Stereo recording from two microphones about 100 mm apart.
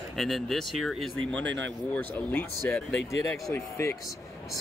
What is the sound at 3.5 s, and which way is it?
Speech, 25° left (ahead or behind).